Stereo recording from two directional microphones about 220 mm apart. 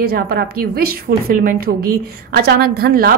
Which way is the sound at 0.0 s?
45° right (ahead or behind).